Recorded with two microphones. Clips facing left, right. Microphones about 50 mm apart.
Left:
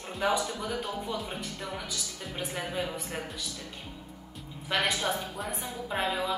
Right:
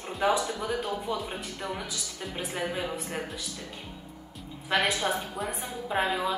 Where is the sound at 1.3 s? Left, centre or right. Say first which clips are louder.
Right 2 dB; centre.